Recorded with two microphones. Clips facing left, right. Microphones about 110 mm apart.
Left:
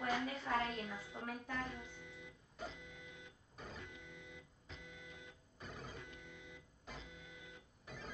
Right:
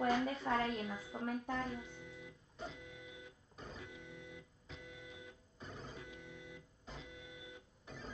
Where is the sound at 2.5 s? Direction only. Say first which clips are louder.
Right 1 dB; centre (ahead or behind).